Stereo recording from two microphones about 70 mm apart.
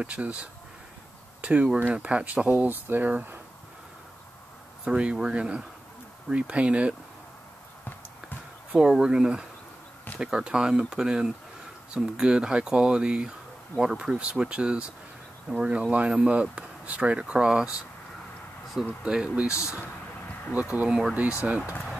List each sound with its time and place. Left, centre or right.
0.0 s speech: centre
4.8 s speech: centre
8.7 s speech: centre
19.0 s speech: centre
20.7 s speech: centre